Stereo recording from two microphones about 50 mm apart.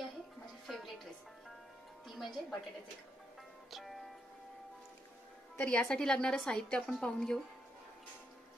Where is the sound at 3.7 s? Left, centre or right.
Centre.